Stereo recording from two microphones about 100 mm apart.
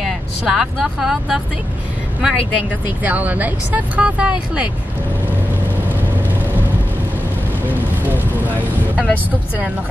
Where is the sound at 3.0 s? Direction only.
15° right (ahead or behind).